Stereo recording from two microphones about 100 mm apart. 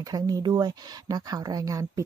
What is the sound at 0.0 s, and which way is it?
Speech, 40° right (ahead or behind).